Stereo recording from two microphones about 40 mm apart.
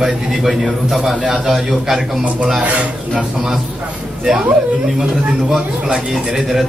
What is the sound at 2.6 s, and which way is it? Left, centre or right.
Speech, right.